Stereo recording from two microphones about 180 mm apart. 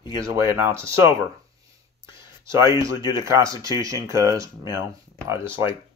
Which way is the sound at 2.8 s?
15° right (ahead or behind).